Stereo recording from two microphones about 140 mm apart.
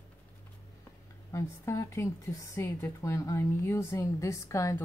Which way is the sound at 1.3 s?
20° left (ahead or behind).